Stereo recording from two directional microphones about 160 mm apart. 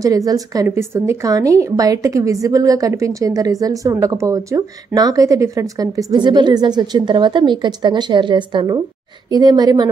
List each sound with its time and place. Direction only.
0.0 s a woman's voice: 20° right (ahead or behind)